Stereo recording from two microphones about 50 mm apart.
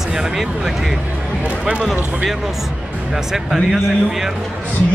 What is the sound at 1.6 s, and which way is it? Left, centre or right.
Speech, centre.